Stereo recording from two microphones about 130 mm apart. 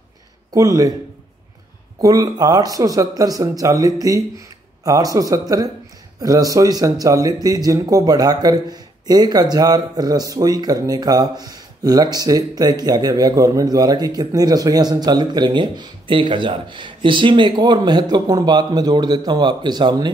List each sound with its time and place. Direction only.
0.5 s speech: 25° right (ahead or behind)
2.0 s speech: 25° right (ahead or behind)